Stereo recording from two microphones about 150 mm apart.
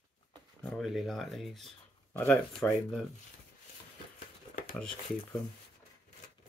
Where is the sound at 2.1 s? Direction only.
15° left (ahead or behind).